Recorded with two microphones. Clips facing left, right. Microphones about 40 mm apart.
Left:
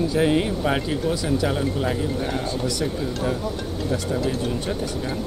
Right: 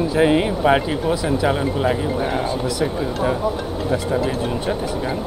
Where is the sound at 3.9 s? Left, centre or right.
Centre.